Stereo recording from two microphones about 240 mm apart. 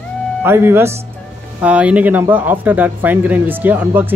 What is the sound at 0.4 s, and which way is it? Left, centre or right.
Speech, centre.